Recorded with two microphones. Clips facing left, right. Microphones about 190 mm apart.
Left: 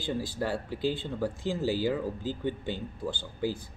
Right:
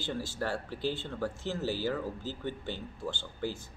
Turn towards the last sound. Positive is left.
turn(degrees=15)  # may be behind; listen again after turning